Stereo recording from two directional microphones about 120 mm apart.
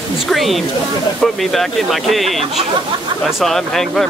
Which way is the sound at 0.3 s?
Centre (ahead or behind).